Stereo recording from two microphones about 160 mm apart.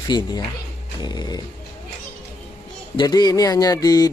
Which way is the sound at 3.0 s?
25° left (ahead or behind).